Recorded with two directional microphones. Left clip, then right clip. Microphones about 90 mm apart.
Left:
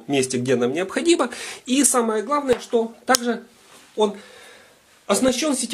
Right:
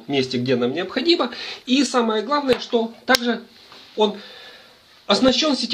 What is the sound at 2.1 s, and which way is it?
Speech, 20° left (ahead or behind).